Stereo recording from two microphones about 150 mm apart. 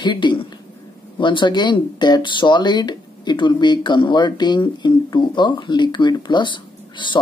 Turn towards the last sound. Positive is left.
turn(degrees=30)  # may be behind; listen again after turning